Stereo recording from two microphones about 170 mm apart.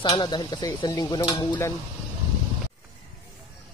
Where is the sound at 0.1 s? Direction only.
25° left (ahead or behind).